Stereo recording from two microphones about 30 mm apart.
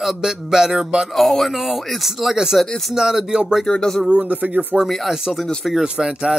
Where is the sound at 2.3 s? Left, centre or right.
Centre.